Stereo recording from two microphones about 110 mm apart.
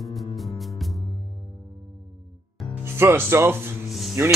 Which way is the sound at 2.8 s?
20° right (ahead or behind).